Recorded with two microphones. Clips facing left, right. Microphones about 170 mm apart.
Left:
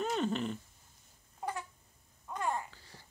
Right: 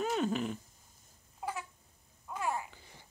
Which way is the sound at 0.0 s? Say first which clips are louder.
Right 1 dB; 5° right (ahead or behind).